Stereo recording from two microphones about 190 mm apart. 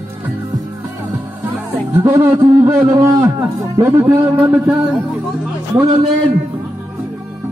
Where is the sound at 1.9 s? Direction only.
15° right (ahead or behind).